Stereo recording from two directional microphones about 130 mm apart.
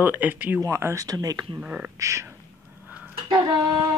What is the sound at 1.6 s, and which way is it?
Speech, 10° right (ahead or behind).